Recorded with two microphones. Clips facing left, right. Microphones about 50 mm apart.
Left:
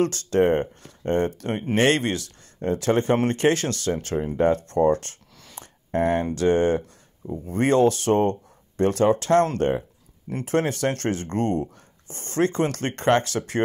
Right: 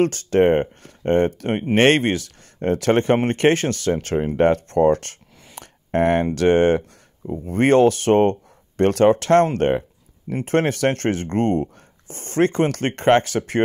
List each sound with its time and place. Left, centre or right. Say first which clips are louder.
0.0 s speech: right 4 dB; right
5.6 s a sound: right 4 dB; right
6.3 s speech: right 4 dB; right